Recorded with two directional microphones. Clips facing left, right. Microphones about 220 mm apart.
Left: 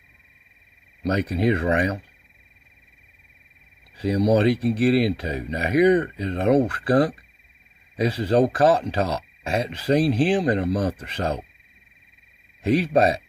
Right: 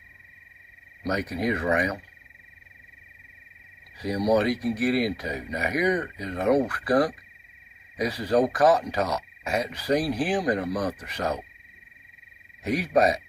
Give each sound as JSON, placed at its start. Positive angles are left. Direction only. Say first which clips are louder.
{"t": 1.0, "sound": "speech", "louder": "left 5 dB", "side_deg": 30}
{"t": 4.0, "sound": "speech", "louder": "left 4 dB", "side_deg": 25}
{"t": 12.6, "sound": "speech", "louder": "left 3 dB", "side_deg": 25}